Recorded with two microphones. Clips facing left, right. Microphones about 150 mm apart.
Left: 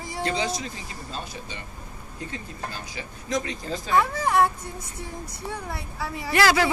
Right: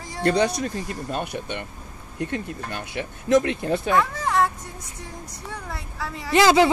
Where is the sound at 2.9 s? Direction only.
65° right (ahead or behind).